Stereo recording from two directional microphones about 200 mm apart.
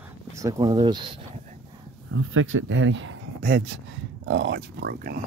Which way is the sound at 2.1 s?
75° right (ahead or behind).